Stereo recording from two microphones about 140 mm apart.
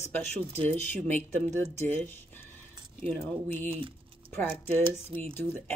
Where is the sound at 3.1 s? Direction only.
15° left (ahead or behind).